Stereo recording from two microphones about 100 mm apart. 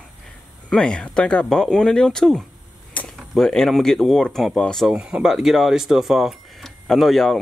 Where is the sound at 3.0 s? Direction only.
15° left (ahead or behind).